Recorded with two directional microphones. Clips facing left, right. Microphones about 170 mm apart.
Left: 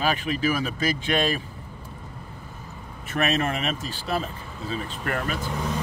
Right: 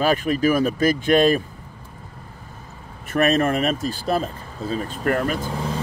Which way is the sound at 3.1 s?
45° right (ahead or behind).